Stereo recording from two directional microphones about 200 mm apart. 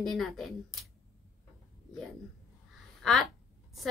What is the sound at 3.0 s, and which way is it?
Speech, centre (ahead or behind).